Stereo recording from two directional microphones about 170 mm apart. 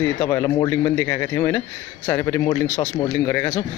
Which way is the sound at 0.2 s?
20° left (ahead or behind).